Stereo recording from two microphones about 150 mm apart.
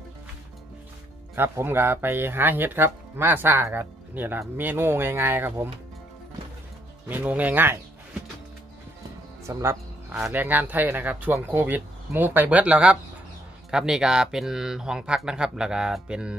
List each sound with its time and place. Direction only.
1.3 s speech: 15° right (ahead or behind)
7.1 s speech: 10° right (ahead or behind)
9.5 s speech: 20° right (ahead or behind)